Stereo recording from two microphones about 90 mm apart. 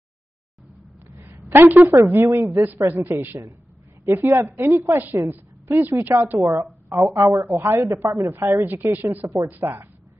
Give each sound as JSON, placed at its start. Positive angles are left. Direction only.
{"t": 1.1, "sound": "speech", "side_deg": -25}